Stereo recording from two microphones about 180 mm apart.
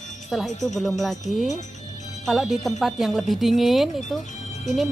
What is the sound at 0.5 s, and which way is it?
Speech, 40° left (ahead or behind).